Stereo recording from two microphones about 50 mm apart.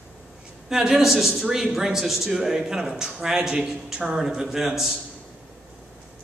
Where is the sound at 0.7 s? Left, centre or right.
Centre.